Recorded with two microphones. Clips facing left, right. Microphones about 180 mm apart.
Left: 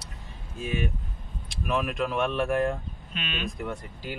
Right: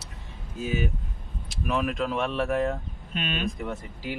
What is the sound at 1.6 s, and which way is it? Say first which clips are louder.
Speech: right 1 dB; centre (ahead or behind).